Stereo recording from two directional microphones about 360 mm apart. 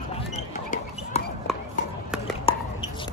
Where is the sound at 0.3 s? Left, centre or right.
Left.